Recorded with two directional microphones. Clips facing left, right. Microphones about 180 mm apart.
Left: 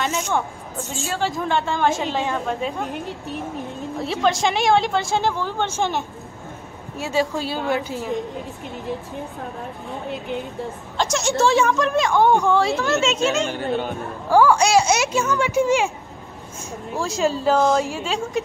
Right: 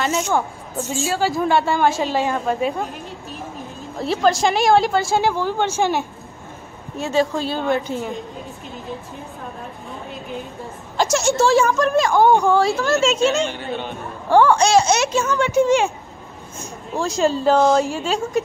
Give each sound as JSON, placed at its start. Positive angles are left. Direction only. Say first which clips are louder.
{"t": 0.0, "sound": "a woman's voice", "louder": "right 3 dB", "side_deg": -5}
{"t": 4.0, "sound": "a woman's voice", "louder": "right 3 dB", "side_deg": 0}
{"t": 7.0, "sound": "a child's voice", "louder": "right 3 dB", "side_deg": 10}
{"t": 11.0, "sound": "a woman's voice", "louder": "right 3 dB", "side_deg": -5}
{"t": 13.4, "sound": "a woman's voice", "louder": "left 1 dB", "side_deg": 45}
{"t": 14.3, "sound": "a child's voice", "louder": "right 1 dB", "side_deg": 10}
{"t": 17.0, "sound": "a woman's voice", "louder": "right 3 dB", "side_deg": 5}